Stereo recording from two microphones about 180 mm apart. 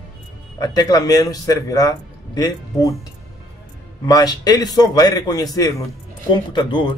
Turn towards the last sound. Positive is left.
turn(degrees=25)  # may be behind; listen again after turning